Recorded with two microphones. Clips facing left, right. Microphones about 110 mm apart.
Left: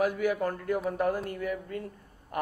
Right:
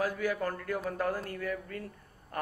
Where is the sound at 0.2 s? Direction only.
20° left (ahead or behind).